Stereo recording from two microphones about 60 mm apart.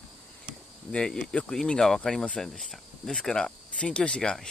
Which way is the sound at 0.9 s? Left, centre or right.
Centre.